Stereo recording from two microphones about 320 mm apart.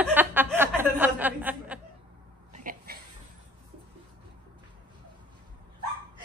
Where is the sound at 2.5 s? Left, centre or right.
Right.